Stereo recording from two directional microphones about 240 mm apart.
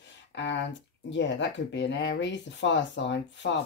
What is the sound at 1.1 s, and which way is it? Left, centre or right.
Speech, left.